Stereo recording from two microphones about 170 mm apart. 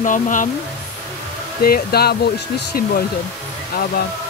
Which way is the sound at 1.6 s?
65° left (ahead or behind).